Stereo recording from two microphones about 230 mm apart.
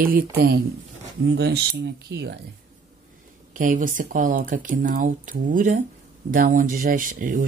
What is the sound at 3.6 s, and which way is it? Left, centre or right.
Speech, right.